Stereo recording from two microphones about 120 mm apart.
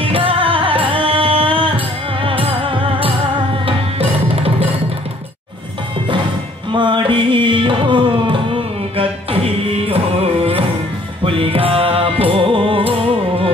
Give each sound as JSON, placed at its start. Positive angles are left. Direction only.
{"t": 0.0, "sound": "music", "side_deg": -50}
{"t": 3.6, "sound": "music", "side_deg": -55}
{"t": 6.7, "sound": "music", "side_deg": -40}
{"t": 11.2, "sound": "music", "side_deg": -50}